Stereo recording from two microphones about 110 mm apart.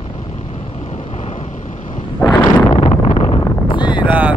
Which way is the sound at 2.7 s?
70° left (ahead or behind).